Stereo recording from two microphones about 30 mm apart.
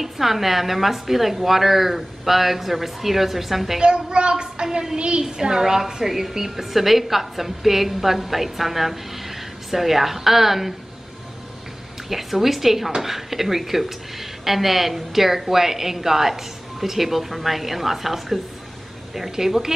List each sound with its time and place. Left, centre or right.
0.0 s a woman's voice: centre
3.8 s a child's voice: right
5.2 s a woman's voice: centre
12.1 s a woman's voice: centre